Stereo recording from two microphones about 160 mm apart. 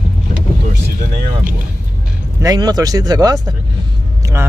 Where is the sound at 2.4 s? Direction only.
25° right (ahead or behind).